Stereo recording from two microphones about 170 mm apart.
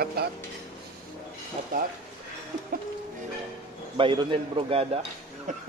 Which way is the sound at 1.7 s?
55° right (ahead or behind).